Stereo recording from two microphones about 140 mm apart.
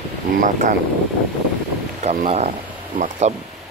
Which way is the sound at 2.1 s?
50° right (ahead or behind).